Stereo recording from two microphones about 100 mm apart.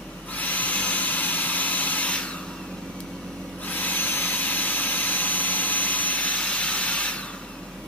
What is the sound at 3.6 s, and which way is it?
Vacuum cleaner, 15° left (ahead or behind).